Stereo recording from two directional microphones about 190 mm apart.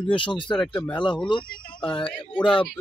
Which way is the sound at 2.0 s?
5° left (ahead or behind).